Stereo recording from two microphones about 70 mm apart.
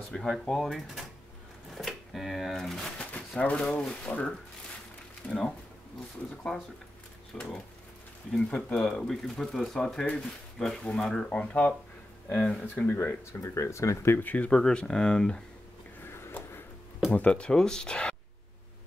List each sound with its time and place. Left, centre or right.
0.1 s speech: centre
1.7 s a sound: centre
3.1 s speech: left
7.3 s speech: centre
12.6 s speech: left
13.3 s speech: left
14.1 s speech: left
14.5 s speech: centre
16.1 s a sound: left
17.1 s speech: centre